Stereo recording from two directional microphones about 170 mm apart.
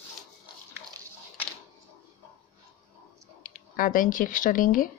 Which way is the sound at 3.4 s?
55° left (ahead or behind).